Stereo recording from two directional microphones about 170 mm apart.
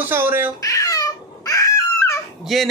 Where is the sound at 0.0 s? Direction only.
10° right (ahead or behind).